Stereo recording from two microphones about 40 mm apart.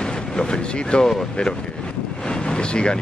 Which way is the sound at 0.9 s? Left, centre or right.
Centre.